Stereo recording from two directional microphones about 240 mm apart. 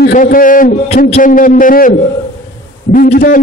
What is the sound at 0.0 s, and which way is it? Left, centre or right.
A man's voice, left.